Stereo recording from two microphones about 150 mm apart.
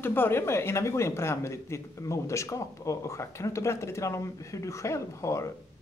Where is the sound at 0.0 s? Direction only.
15° left (ahead or behind).